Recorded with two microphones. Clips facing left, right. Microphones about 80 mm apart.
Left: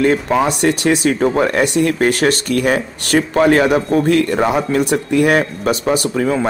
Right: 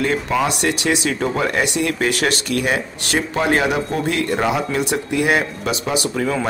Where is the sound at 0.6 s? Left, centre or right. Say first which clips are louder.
Left 5 dB; left.